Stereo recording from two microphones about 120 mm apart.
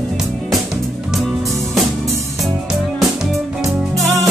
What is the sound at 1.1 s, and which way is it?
Music, centre (ahead or behind).